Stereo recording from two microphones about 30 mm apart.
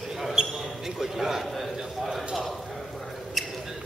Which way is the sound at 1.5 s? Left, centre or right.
Centre.